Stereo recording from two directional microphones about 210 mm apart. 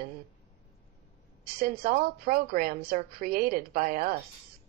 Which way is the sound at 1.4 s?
45° right (ahead or behind).